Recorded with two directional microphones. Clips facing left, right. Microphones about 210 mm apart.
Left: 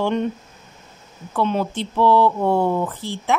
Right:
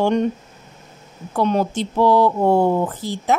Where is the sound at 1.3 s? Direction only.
40° right (ahead or behind).